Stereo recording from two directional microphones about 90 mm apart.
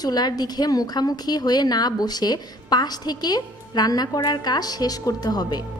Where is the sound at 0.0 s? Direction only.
50° left (ahead or behind).